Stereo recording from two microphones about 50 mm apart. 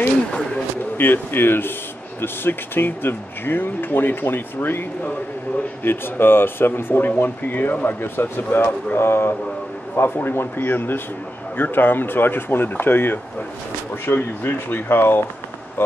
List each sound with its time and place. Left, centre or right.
0.9 s speech: left